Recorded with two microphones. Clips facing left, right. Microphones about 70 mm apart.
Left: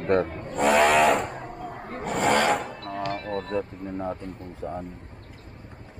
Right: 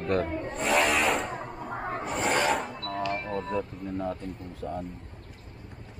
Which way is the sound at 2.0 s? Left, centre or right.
Left.